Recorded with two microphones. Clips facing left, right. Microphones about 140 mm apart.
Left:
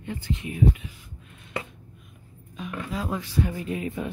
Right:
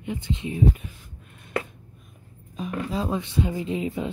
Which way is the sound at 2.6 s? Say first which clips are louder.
Right 4 dB; 35° right (ahead or behind).